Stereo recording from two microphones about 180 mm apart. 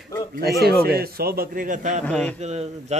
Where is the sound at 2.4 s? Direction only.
40° right (ahead or behind).